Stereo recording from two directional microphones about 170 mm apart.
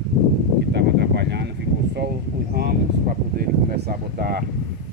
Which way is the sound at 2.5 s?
65° right (ahead or behind).